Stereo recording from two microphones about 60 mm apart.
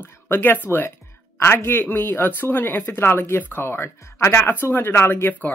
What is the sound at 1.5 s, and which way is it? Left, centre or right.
Speech, left.